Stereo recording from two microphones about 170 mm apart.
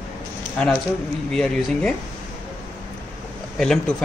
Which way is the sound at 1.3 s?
5° left (ahead or behind).